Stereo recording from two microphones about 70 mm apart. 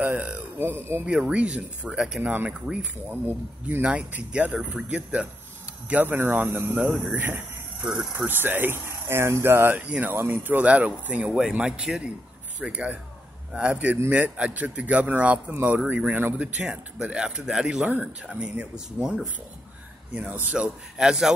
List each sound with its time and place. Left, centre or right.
0.0 s a sound: right
1.0 s speech: centre
7.2 s cricket: right
8.3 s speech: right
10.1 s speech: right; by 19.2 s centre
20.2 s speech: right
20.5 s speech: centre